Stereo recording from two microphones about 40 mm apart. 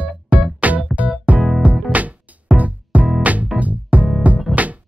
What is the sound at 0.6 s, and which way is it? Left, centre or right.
Music, right.